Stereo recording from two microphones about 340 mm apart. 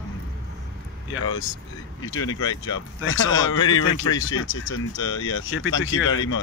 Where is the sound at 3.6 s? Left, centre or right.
Centre.